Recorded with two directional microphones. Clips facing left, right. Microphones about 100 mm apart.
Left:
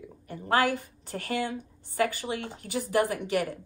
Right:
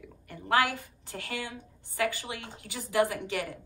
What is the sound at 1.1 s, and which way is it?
Speech, 45° left (ahead or behind).